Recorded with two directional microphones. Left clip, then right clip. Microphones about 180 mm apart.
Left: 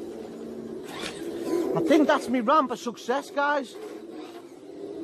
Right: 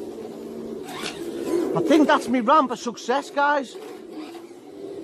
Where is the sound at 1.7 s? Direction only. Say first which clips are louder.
Right 3 dB; centre (ahead or behind).